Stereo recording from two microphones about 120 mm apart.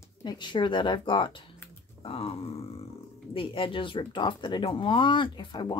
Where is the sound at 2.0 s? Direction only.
50° left (ahead or behind).